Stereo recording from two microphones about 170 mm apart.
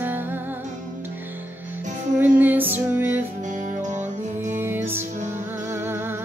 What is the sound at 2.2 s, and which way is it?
Music, 10° right (ahead or behind).